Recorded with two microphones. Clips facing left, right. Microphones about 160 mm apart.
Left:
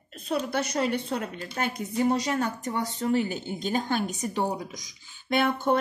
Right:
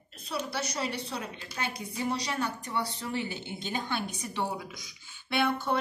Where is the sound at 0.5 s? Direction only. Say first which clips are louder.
Left 7 dB; 50° left (ahead or behind).